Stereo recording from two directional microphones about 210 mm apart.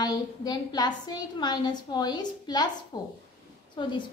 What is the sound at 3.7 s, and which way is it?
Speech, 20° left (ahead or behind).